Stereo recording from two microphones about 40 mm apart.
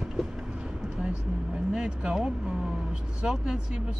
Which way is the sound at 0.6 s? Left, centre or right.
Right.